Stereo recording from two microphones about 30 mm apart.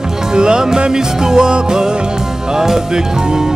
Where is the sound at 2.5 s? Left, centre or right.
Centre.